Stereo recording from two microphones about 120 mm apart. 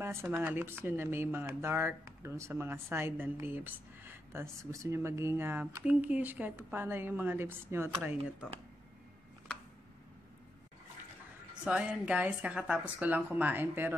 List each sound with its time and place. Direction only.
0.0 s a woman's voice: 20° right (ahead or behind)
11.6 s a woman's voice: 10° right (ahead or behind)